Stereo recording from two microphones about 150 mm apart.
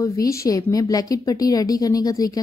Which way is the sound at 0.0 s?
20° left (ahead or behind).